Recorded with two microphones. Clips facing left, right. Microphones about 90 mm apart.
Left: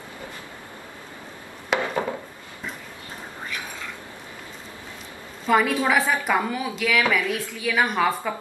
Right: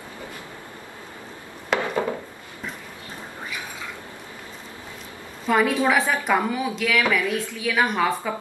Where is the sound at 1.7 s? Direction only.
5° left (ahead or behind).